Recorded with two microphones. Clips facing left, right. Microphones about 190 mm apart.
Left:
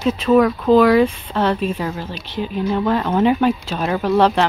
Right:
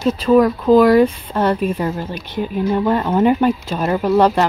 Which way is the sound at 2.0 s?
50° right (ahead or behind).